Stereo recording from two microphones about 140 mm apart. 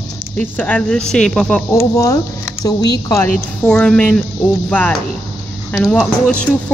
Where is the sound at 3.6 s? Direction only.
5° left (ahead or behind).